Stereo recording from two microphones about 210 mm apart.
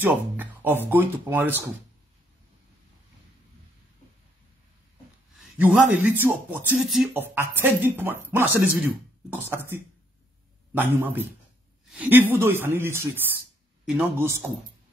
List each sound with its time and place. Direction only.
0.0 s speech: 10° right (ahead or behind)
5.4 s speech: 5° right (ahead or behind)
9.5 s speech: 10° right (ahead or behind)